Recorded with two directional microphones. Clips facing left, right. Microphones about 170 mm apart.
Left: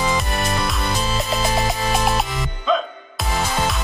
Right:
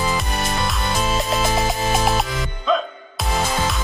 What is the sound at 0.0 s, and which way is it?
Music, centre (ahead or behind).